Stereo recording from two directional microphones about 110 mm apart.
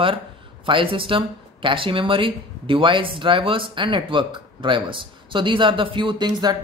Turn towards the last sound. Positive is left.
turn(degrees=-40)  # may be behind; listen again after turning